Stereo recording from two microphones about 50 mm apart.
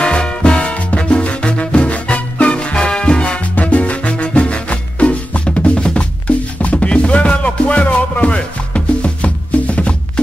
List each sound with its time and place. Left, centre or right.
0.0 s music: centre